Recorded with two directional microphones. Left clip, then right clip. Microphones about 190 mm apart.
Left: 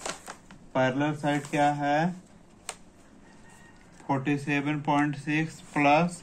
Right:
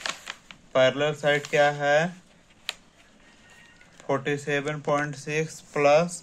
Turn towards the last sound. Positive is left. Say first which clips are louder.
# right 3 dB
turn(degrees=-70)  # may be behind; listen again after turning